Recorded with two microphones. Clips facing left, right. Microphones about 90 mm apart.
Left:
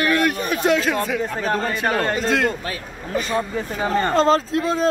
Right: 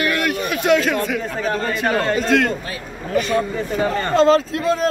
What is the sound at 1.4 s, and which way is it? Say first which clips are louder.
Speech: right 2 dB; 35° left (ahead or behind).